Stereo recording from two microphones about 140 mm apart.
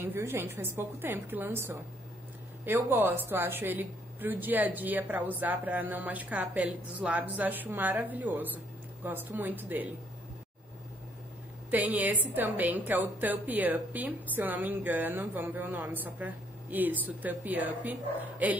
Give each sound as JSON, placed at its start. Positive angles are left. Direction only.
{"t": 0.0, "sound": "a woman's voice", "side_deg": -15}
{"t": 11.7, "sound": "a woman's voice", "side_deg": -10}